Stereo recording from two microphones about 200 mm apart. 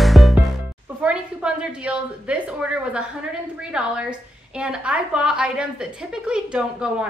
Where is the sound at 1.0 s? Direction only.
5° right (ahead or behind).